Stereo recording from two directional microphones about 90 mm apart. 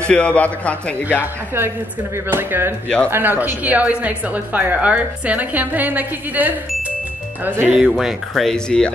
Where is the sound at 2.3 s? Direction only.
25° right (ahead or behind).